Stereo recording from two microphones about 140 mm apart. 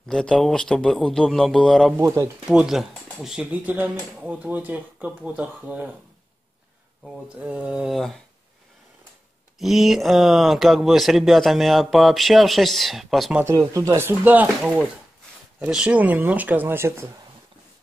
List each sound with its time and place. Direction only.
0.1 s speech: 5° left (ahead or behind)
2.0 s speech: 25° right (ahead or behind)
2.4 s speech: 5° right (ahead or behind)
7.3 s speech: 10° right (ahead or behind)
9.6 s speech: centre (ahead or behind)
13.4 s speech: 20° right (ahead or behind)